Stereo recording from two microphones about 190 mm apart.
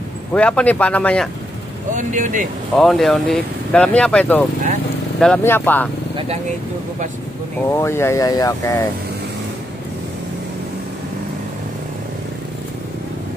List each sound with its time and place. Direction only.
0.3 s speech: 5° left (ahead or behind)
2.0 s speech: 40° right (ahead or behind)
2.8 s speech: centre (ahead or behind)
7.7 s speech: 15° left (ahead or behind)